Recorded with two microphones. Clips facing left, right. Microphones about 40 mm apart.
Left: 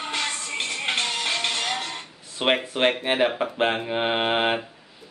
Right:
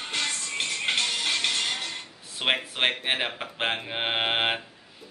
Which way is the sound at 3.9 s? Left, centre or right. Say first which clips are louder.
Left 4 dB; centre.